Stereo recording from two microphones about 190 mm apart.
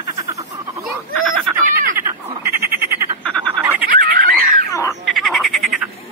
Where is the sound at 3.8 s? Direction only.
50° right (ahead or behind).